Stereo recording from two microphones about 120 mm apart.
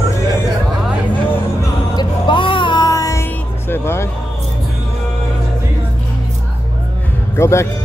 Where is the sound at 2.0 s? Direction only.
40° left (ahead or behind); by 4.1 s 20° left (ahead or behind).